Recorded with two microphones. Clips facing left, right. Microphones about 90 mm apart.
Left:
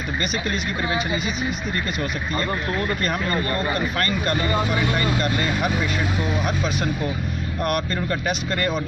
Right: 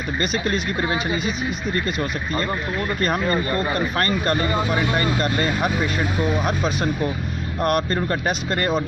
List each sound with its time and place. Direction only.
0.2 s speech: 35° right (ahead or behind)
3.9 s speech: 35° right (ahead or behind)